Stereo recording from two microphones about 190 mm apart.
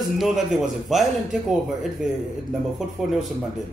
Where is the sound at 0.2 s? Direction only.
Centre (ahead or behind).